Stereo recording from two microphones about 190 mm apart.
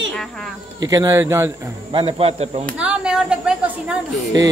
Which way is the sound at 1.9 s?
30° right (ahead or behind).